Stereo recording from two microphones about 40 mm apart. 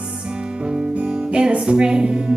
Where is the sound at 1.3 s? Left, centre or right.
Right.